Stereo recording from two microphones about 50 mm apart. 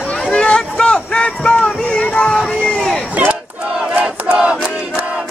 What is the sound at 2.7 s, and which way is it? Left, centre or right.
Crowd, centre.